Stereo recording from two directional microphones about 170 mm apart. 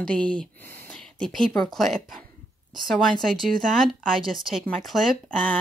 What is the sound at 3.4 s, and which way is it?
Speech, centre (ahead or behind).